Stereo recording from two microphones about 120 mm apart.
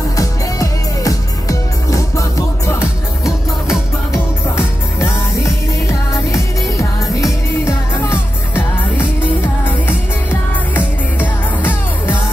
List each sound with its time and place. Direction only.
0.1 s music: 30° left (ahead or behind)
4.1 s music: 25° left (ahead or behind)